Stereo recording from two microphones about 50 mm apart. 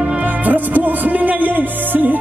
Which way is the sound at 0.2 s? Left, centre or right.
Right.